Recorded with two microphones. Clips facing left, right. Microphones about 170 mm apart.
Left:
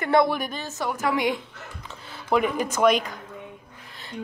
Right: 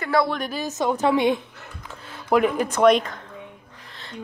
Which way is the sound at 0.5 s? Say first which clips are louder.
Right 6 dB; 20° right (ahead or behind).